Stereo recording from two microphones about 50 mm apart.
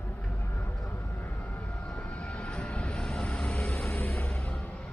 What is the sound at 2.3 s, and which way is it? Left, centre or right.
Vehicle, centre.